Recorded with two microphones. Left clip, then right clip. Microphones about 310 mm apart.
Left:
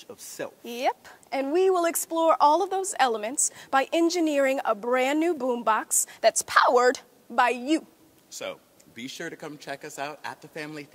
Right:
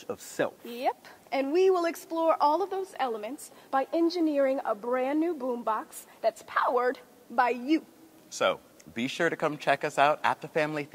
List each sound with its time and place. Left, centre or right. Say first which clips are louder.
0.0 s speech: right 6 dB; right
0.7 s speech: left 3 dB; left
8.3 s speech: right 9 dB; right